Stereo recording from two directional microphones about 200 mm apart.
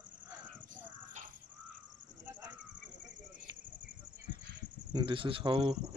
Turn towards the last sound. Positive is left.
turn(degrees=-25)  # may be behind; listen again after turning